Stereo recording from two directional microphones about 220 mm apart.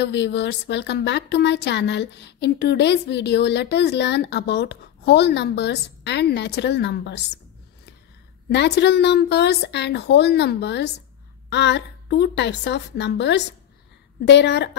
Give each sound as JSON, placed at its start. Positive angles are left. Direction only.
{"t": 0.0, "sound": "a woman's voice", "side_deg": 50}
{"t": 8.5, "sound": "a woman's voice", "side_deg": 50}